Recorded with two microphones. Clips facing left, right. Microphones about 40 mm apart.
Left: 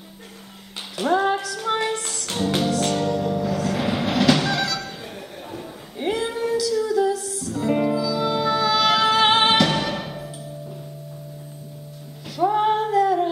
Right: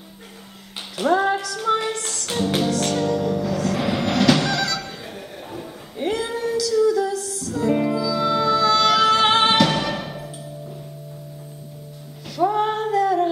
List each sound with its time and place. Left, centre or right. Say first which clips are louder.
0.9 s female singing: right 1 dB; centre
1.4 s music: right 2 dB; centre
5.5 s female singing: right 1 dB; centre
12.4 s female singing: left 1 dB; centre